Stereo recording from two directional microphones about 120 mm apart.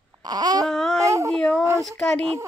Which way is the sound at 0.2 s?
35° right (ahead or behind).